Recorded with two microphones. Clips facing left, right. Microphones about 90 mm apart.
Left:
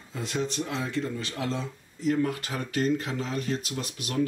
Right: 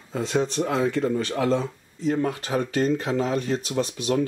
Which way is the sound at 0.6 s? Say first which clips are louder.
Right 7 dB; 50° right (ahead or behind).